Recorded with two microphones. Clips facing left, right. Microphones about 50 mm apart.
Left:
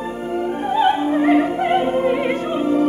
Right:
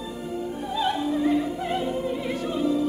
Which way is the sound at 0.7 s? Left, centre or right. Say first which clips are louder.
Left 8 dB; left.